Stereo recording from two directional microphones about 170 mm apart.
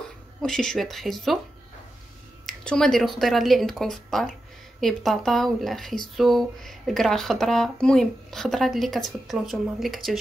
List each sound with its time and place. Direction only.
0.4 s speech: 5° left (ahead or behind)
2.4 s speech: 5° left (ahead or behind)